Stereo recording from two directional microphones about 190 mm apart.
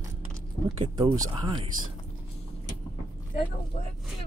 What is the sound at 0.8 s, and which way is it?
Speech, 25° right (ahead or behind).